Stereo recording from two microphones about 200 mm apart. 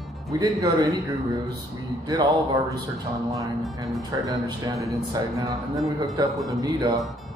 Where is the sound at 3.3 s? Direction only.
15° right (ahead or behind).